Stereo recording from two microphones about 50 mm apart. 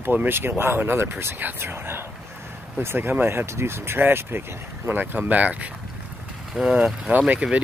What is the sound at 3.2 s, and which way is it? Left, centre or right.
Speech, right.